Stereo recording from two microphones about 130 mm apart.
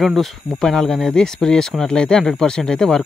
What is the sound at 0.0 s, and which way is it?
Speech, centre (ahead or behind).